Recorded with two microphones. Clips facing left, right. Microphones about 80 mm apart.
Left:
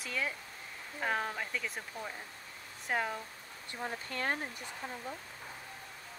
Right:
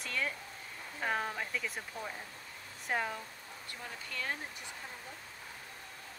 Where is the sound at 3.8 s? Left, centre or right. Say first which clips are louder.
Left 6 dB; left.